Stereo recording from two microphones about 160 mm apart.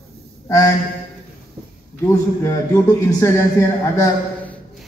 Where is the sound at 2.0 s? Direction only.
20° left (ahead or behind).